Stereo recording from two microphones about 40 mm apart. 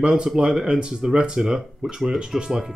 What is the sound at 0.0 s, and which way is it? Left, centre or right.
Speech, centre.